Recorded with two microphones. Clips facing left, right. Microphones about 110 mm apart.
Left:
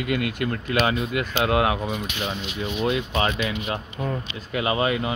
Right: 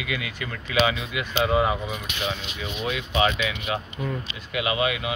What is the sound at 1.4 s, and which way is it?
Speech, 70° left (ahead or behind).